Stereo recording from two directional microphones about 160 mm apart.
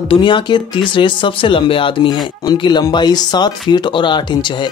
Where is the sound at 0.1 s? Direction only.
30° left (ahead or behind).